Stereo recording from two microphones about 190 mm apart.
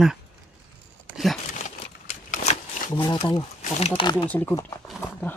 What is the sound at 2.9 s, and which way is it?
Speech, 25° left (ahead or behind).